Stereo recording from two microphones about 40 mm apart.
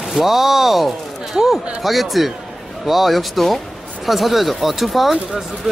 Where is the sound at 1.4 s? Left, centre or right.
Centre.